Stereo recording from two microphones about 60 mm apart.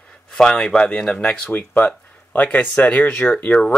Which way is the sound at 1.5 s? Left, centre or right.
Left.